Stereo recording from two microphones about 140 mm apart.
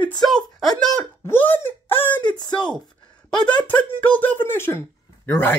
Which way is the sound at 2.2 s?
35° left (ahead or behind).